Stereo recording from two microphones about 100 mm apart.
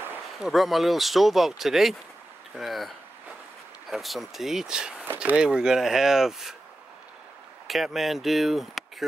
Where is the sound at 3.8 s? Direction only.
Centre (ahead or behind).